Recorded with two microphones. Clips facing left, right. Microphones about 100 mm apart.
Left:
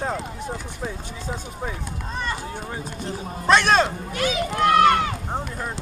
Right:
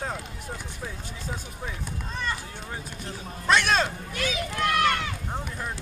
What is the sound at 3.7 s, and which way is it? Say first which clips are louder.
Speech: left 6 dB; 55° left (ahead or behind).